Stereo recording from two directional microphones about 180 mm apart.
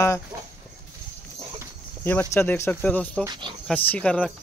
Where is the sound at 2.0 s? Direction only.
10° left (ahead or behind).